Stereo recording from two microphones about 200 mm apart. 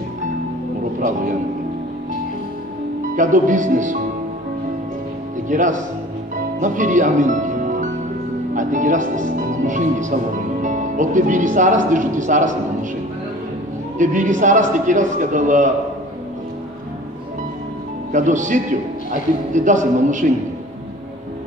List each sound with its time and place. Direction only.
3.2 s a man's voice: 40° right (ahead or behind)
5.5 s a man's voice: 40° right (ahead or behind)
13.9 s a man's voice: 40° right (ahead or behind)
18.1 s a man's voice: 40° right (ahead or behind)